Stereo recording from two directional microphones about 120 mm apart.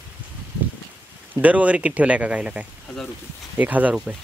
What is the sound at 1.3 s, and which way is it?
Speech, 10° right (ahead or behind).